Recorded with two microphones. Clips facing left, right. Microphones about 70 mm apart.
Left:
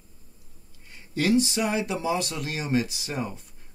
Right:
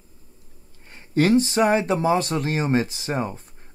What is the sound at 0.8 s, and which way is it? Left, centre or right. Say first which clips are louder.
Speech: right 5 dB; right.